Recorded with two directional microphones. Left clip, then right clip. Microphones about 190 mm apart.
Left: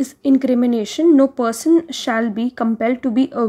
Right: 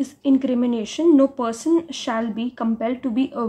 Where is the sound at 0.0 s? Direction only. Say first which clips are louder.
Left 3 dB; 30° left (ahead or behind).